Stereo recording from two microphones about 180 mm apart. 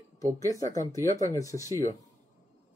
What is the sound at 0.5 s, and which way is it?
Speech, 15° left (ahead or behind).